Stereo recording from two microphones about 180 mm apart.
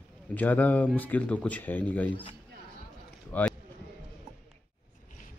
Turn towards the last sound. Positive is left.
turn(degrees=10)  # may be behind; listen again after turning